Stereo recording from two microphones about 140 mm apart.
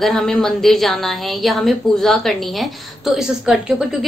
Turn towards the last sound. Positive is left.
turn(degrees=0)  # may be behind; listen again after turning